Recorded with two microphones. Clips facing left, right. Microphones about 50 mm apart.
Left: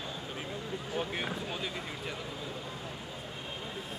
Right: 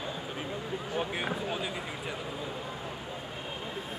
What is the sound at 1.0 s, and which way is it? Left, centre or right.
Speech, centre.